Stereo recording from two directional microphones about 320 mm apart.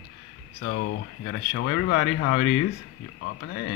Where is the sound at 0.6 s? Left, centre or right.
Left.